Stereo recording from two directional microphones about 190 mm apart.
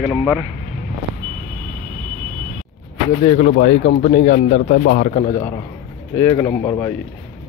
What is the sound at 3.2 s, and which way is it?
Speech, 35° left (ahead or behind).